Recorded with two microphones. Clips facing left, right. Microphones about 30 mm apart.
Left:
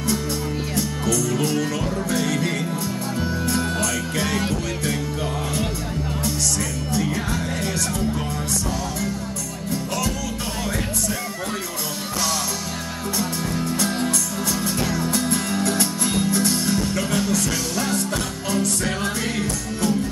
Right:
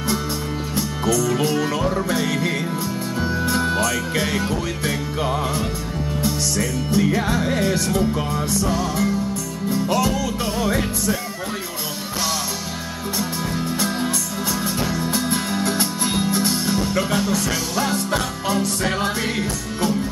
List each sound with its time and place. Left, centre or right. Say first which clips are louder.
0.7 s music: right 3 dB; centre
2.1 s music: right 1 dB; centre
6.9 s music: right 5 dB; centre
13.8 s music: even; centre